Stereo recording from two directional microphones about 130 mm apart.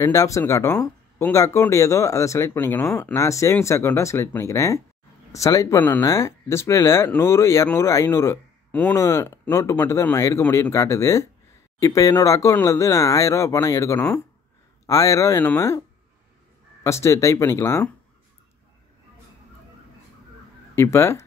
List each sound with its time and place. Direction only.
0.0 s speech: 25° left (ahead or behind)
16.8 s speech: 20° left (ahead or behind)
20.7 s speech: 20° left (ahead or behind)